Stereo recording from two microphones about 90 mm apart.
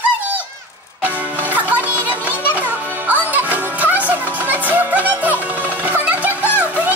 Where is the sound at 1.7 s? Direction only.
20° right (ahead or behind).